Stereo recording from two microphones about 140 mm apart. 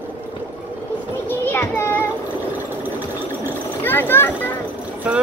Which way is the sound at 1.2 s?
15° left (ahead or behind).